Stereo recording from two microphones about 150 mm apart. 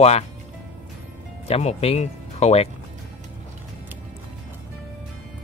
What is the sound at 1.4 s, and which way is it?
Speech, 45° left (ahead or behind).